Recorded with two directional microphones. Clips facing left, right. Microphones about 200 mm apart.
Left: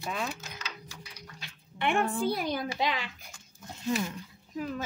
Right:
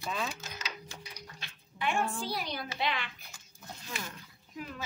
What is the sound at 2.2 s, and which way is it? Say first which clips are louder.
Speech: left 7 dB; 50° left (ahead or behind).